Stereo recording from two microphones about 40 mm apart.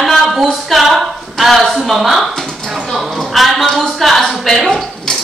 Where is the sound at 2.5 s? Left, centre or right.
Centre.